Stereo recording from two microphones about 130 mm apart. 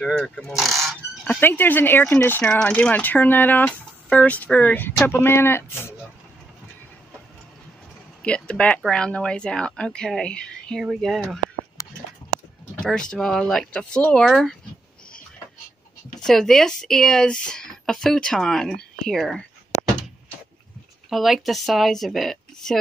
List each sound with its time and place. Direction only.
0.4 s speech: centre (ahead or behind)
1.2 s speech: 10° left (ahead or behind)
8.2 s speech: 10° left (ahead or behind)
13.1 s speech: 5° left (ahead or behind)
16.2 s speech: 5° left (ahead or behind)
21.1 s speech: centre (ahead or behind)